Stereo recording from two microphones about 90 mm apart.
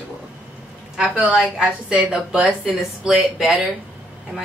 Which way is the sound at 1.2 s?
10° right (ahead or behind).